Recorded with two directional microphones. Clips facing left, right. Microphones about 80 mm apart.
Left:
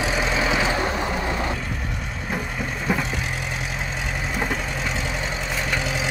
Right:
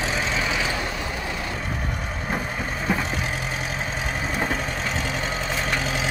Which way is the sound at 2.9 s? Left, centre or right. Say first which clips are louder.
Left 1 dB; centre.